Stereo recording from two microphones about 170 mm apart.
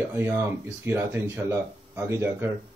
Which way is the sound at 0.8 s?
10° right (ahead or behind).